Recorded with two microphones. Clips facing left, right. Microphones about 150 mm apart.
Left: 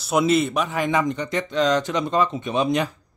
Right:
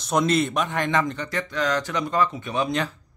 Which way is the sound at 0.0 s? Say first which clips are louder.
Left 2 dB; 5° left (ahead or behind).